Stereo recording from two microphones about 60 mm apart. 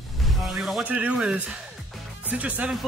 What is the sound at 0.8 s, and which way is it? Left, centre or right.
Speech, right.